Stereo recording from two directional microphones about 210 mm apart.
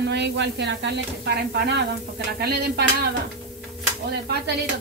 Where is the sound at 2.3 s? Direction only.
50° right (ahead or behind).